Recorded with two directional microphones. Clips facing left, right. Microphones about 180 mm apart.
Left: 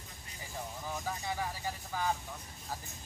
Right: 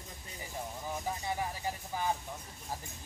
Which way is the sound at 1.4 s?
20° right (ahead or behind).